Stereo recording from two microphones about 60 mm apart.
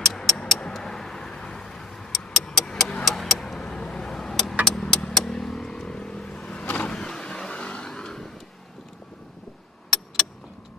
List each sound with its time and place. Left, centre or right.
0.0 s vehicle: centre
2.4 s a sound: centre
3.1 s vehicle: centre
3.6 s vehicle: centre
4.6 s a sound: centre
5.1 s vehicle: centre
6.9 s vehicle: centre